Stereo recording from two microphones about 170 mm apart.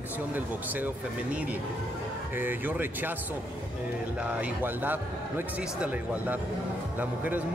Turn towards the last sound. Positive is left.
turn(degrees=-10)  # may be behind; listen again after turning